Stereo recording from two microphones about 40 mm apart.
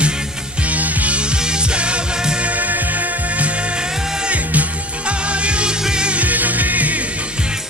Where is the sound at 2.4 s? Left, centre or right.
Right.